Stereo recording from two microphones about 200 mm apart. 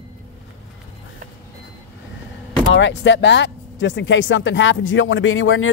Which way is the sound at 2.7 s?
65° left (ahead or behind).